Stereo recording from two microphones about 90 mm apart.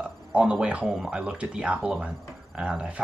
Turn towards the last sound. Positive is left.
turn(degrees=-10)  # may be behind; listen again after turning